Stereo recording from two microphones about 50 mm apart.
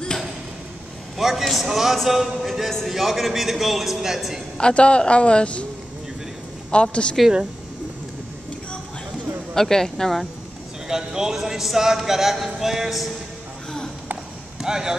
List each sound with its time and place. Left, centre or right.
1.1 s a man's voice: centre
4.6 s a man's voice: left
6.7 s a man's voice: left
9.5 s speech: centre
10.9 s speech: centre
14.6 s speech: centre